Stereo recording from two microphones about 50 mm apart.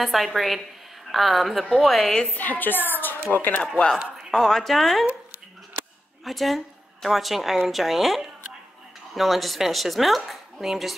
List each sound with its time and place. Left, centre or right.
0.0 s a woman's voice: centre
2.3 s a woman's voice: left
4.3 s a woman's voice: centre
6.2 s a woman's voice: centre